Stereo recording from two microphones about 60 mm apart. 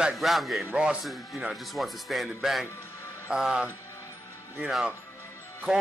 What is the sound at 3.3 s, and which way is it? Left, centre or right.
Speech, centre.